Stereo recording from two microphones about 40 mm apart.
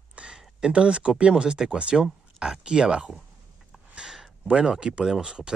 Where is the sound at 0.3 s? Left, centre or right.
Centre.